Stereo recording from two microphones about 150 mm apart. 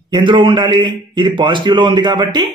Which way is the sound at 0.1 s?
30° right (ahead or behind).